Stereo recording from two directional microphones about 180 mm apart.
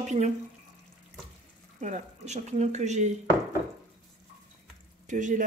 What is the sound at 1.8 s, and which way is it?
Speech, 40° right (ahead or behind).